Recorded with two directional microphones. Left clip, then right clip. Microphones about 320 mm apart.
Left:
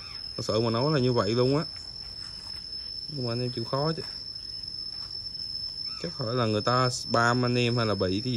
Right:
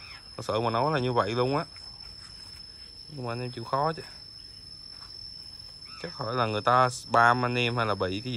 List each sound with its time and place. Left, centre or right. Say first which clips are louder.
0.4 s speech: even; centre
3.3 s speech: even; centre
6.0 s speech: right 1 dB; centre